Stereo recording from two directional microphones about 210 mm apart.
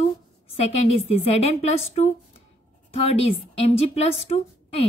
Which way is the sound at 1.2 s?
30° left (ahead or behind).